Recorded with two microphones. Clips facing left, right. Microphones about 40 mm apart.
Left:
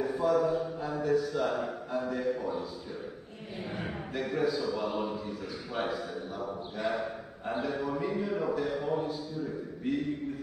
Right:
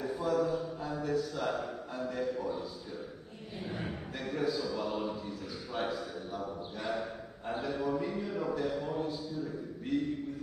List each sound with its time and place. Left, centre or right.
0.0 s a man's voice: centre
8.7 s a man's voice: centre
9.9 s a man's voice: centre